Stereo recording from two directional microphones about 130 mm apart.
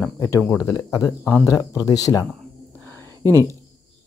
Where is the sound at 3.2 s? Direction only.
25° right (ahead or behind).